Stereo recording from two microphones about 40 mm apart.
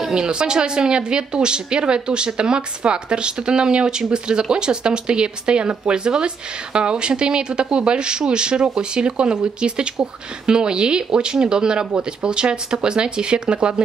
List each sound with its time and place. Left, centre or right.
0.1 s speech: right